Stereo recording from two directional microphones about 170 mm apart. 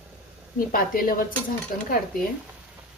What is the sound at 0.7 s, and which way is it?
Speech, 55° left (ahead or behind).